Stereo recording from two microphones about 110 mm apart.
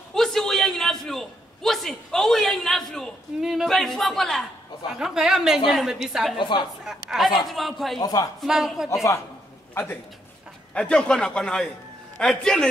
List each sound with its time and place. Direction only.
0.1 s a man's voice: 5° left (ahead or behind)
6.3 s a woman's voice: 45° left (ahead or behind)
6.8 s a woman's voice: 5° right (ahead or behind)
8.0 s a man's voice: 35° left (ahead or behind)
8.4 s a woman's voice: 5° right (ahead or behind)
10.7 s a man's voice: 10° left (ahead or behind)